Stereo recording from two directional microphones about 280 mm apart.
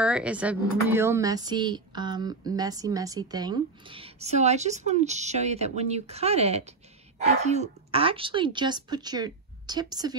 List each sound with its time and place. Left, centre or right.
0.0 s speech: centre